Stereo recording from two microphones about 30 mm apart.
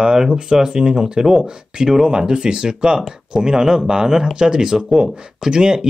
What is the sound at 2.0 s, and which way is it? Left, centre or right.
Speech, right.